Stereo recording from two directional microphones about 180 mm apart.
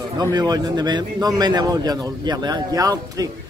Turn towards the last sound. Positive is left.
turn(degrees=-20)  # may be behind; listen again after turning